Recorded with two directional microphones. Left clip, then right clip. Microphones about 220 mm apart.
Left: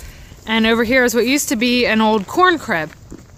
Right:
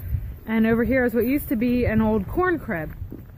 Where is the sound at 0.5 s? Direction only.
5° left (ahead or behind).